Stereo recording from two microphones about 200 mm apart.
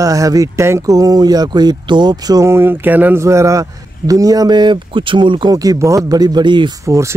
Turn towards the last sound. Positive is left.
turn(degrees=-15)  # may be behind; listen again after turning